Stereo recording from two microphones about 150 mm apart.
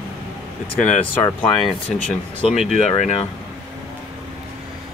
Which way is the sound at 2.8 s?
50° left (ahead or behind).